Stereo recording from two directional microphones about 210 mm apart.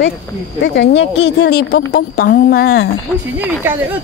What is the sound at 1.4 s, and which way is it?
A woman's voice, 50° left (ahead or behind).